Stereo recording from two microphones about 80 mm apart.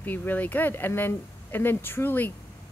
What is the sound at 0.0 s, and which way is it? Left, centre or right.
Speech, left.